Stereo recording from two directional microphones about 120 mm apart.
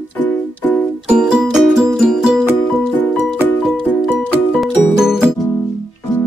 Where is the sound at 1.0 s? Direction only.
5° right (ahead or behind).